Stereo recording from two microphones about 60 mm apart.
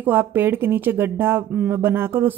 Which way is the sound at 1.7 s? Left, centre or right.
Right.